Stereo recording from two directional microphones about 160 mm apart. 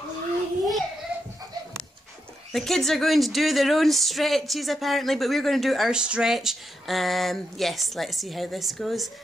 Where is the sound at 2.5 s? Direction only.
Centre (ahead or behind).